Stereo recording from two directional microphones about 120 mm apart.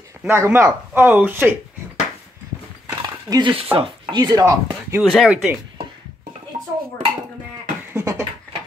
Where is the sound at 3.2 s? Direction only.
35° right (ahead or behind).